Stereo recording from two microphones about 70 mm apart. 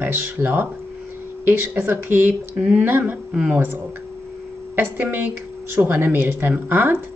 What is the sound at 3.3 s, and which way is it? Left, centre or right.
Speech, centre.